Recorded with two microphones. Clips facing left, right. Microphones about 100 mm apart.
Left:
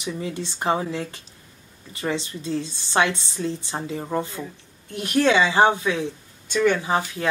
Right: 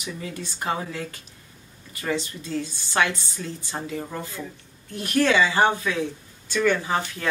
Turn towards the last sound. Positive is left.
turn(degrees=20)  # may be behind; listen again after turning